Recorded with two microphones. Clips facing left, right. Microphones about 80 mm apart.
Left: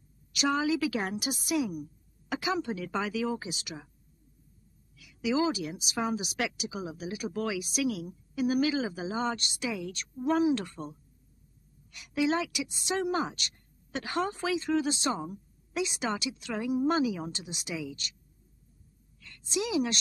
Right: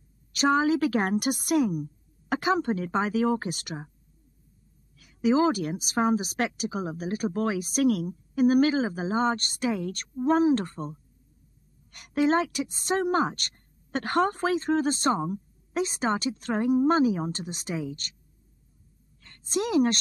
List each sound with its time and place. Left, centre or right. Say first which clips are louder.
0.3 s speech: right 5 dB; right
4.9 s a woman's voice: right 6 dB; right